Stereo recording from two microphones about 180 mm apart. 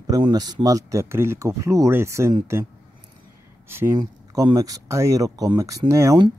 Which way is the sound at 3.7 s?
15° right (ahead or behind).